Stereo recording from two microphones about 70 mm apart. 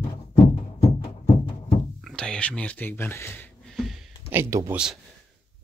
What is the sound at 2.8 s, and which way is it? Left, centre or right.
Speech, left.